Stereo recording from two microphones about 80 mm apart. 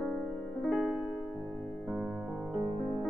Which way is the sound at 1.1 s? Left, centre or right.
Left.